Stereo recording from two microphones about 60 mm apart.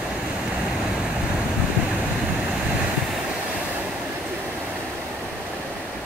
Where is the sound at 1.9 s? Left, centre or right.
Centre.